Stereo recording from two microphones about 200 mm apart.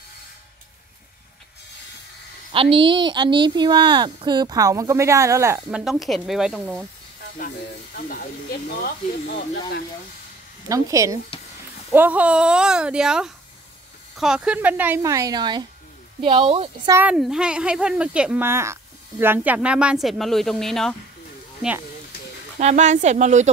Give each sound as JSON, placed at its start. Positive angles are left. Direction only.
{"t": 2.5, "sound": "speech", "side_deg": -25}
{"t": 7.9, "sound": "speech", "side_deg": 50}
{"t": 10.7, "sound": "speech", "side_deg": -15}
{"t": 16.9, "sound": "speech", "side_deg": -5}
{"t": 22.6, "sound": "speech", "side_deg": -35}